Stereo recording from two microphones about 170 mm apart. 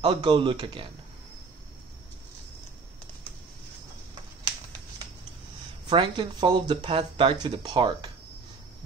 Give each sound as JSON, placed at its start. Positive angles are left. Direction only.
{"t": 0.0, "sound": "speech", "side_deg": -30}
{"t": 5.9, "sound": "speech", "side_deg": -25}